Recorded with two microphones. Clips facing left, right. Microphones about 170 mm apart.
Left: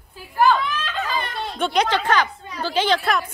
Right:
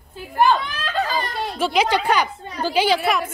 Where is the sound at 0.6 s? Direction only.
40° right (ahead or behind).